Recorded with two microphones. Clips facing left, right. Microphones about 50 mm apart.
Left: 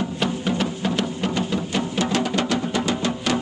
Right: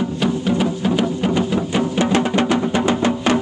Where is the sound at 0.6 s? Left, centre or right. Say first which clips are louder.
Right 5 dB; centre.